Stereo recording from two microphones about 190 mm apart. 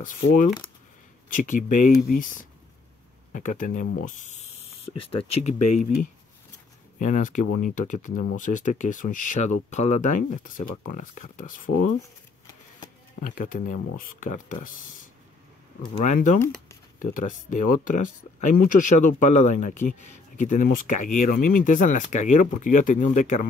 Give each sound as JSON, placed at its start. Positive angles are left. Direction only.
{"t": 0.0, "sound": "speech", "side_deg": 45}
{"t": 4.8, "sound": "speech", "side_deg": 30}
{"t": 13.2, "sound": "speech", "side_deg": 45}
{"t": 16.0, "sound": "speech", "side_deg": 40}
{"t": 21.3, "sound": "speech", "side_deg": 50}